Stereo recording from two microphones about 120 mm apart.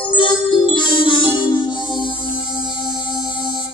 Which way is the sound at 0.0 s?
45° left (ahead or behind).